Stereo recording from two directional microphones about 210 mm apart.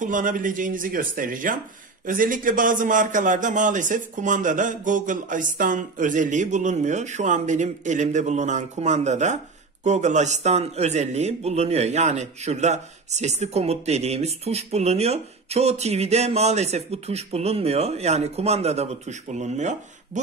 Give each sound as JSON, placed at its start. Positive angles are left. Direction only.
{"t": 0.0, "sound": "a man's voice", "side_deg": -40}